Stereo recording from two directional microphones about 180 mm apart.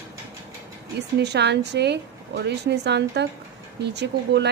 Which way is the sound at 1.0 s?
70° right (ahead or behind).